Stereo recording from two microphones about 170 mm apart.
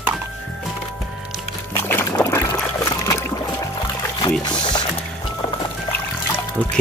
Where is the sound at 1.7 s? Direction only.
15° left (ahead or behind).